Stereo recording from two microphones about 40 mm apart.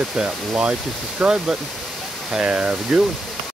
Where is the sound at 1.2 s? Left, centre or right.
Centre.